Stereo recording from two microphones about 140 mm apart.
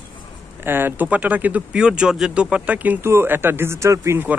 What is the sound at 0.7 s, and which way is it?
Speech, 15° right (ahead or behind).